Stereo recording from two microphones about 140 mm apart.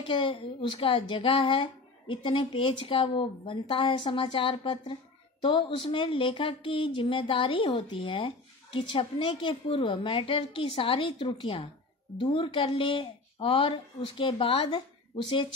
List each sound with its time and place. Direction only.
0.0 s speech: 35° left (ahead or behind)